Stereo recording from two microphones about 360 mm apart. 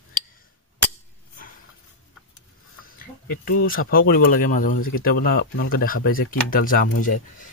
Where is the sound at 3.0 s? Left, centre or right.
Left.